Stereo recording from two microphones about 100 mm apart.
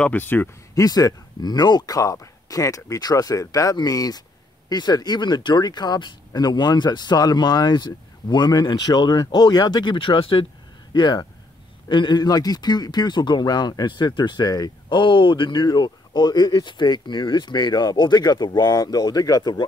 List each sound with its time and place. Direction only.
0.0 s speech: 20° left (ahead or behind)
0.7 s speech: 35° left (ahead or behind); by 10.4 s 60° left (ahead or behind)
10.9 s speech: 45° left (ahead or behind)
14.9 s speech: 55° left (ahead or behind)